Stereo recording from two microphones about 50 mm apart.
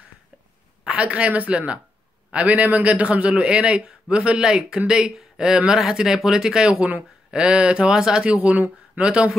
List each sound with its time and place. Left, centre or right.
0.8 s a man's voice: right
8.4 s a man's voice: right